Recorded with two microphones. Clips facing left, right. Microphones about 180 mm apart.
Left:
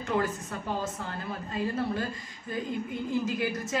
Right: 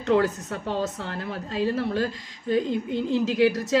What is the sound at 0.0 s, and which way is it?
A woman's voice, 70° right (ahead or behind).